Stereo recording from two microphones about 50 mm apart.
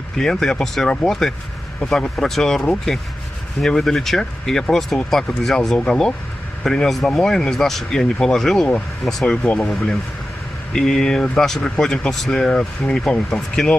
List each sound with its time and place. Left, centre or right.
0.2 s speech: centre
2.0 s speech: centre
8.5 s speech: left
9.6 s speech: centre
12.4 s speech: centre